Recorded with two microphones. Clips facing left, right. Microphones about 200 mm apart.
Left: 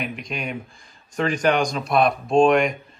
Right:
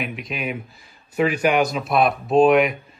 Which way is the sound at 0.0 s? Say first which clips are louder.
Right 1 dB; centre (ahead or behind).